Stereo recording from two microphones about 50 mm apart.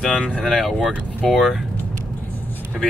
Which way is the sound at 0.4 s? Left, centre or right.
Centre.